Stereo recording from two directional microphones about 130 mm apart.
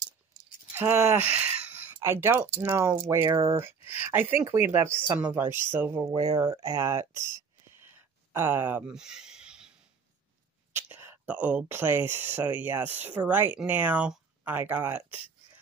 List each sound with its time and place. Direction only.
0.7 s speech: 15° right (ahead or behind)
6.1 s speech: 30° right (ahead or behind)
7.6 s a sound: 20° right (ahead or behind)
10.7 s speech: 15° right (ahead or behind)